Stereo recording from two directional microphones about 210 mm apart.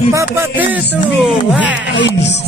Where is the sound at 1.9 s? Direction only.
55° left (ahead or behind).